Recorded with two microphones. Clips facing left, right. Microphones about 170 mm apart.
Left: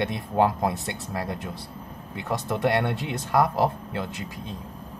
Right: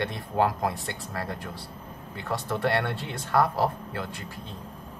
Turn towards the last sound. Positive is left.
turn(degrees=20)  # may be behind; listen again after turning